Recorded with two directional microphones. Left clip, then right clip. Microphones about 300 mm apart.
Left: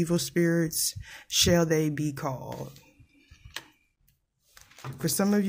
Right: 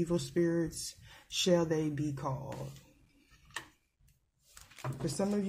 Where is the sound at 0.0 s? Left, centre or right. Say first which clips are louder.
Left 5 dB; left.